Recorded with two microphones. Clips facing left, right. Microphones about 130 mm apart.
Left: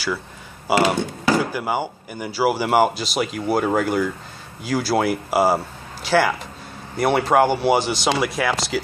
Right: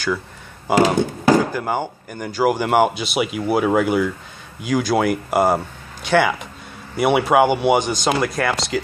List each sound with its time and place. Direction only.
0.9 s speech: 45° right (ahead or behind)
1.4 s speech: 10° left (ahead or behind)